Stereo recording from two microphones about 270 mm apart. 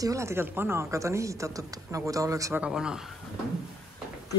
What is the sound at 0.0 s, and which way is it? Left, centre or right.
Speech, centre.